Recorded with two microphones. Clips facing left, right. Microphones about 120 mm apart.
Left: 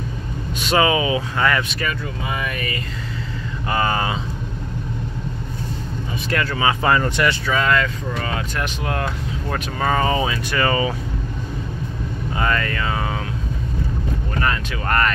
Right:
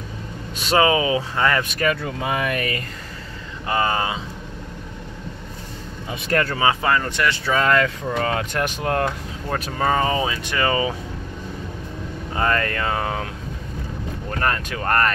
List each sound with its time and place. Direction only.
0.6 s speech: 35° right (ahead or behind)
1.6 s speech: 45° right (ahead or behind)
1.9 s speech: 60° right (ahead or behind)
3.6 s speech: 25° right (ahead or behind)
6.2 s speech: 45° right (ahead or behind)
6.8 s speech: 15° left (ahead or behind)
7.4 s speech: 40° right (ahead or behind)
9.5 s speech: 30° right (ahead or behind)
12.4 s speech: 45° right (ahead or behind)
14.4 s speech: 45° right (ahead or behind)